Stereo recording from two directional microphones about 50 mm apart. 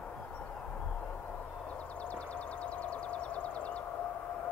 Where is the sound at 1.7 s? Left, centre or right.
Left.